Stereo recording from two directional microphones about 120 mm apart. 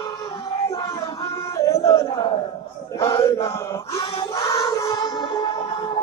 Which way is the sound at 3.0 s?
25° left (ahead or behind).